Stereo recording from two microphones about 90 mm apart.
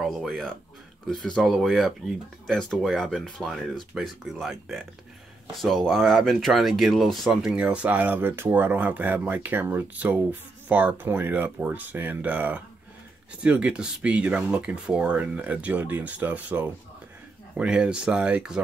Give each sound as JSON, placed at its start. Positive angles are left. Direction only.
{"t": 0.0, "sound": "speech", "side_deg": 0}
{"t": 7.6, "sound": "speech", "side_deg": -15}